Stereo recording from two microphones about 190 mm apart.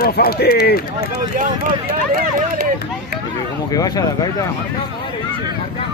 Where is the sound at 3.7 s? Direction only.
20° left (ahead or behind).